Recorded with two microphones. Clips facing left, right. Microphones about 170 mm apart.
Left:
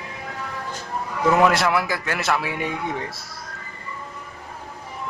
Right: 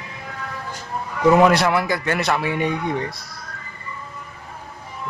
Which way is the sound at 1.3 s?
Centre (ahead or behind).